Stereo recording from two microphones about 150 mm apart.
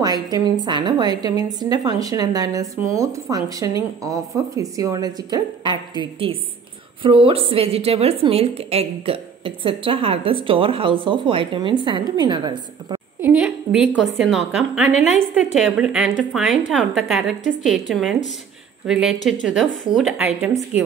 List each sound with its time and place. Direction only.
0.0 s a woman's voice: 25° right (ahead or behind)
13.2 s a woman's voice: 10° right (ahead or behind)
14.9 s a woman's voice: 50° left (ahead or behind)
15.3 s a woman's voice: 5° right (ahead or behind)